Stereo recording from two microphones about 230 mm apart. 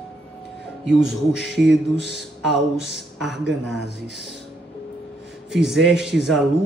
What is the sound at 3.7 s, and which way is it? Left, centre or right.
Speech, left.